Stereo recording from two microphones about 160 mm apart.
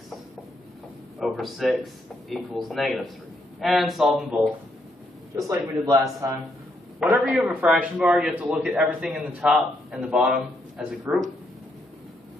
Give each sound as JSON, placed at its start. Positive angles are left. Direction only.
{"t": 1.2, "sound": "a man's voice", "side_deg": 0}
{"t": 5.3, "sound": "a man's voice", "side_deg": -20}
{"t": 7.1, "sound": "a man's voice", "side_deg": -5}